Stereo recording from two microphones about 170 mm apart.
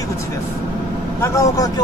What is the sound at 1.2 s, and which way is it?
Speech, 20° left (ahead or behind).